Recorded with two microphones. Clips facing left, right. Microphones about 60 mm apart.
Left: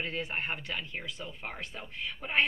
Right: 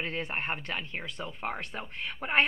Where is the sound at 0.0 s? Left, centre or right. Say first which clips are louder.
Right 1 dB; right.